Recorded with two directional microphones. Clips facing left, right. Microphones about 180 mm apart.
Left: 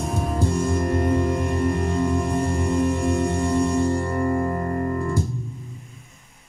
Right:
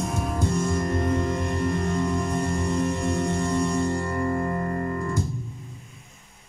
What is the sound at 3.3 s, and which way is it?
Music, 30° left (ahead or behind).